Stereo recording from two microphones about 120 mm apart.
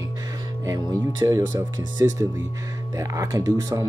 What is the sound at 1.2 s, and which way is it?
Speech, 30° right (ahead or behind).